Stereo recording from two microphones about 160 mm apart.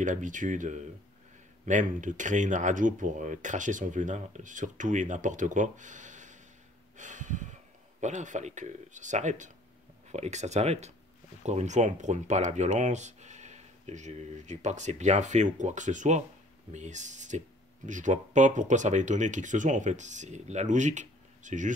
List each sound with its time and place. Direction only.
0.0 s speech: 50° right (ahead or behind)
7.0 s a sound: 50° right (ahead or behind)
8.0 s speech: 50° right (ahead or behind)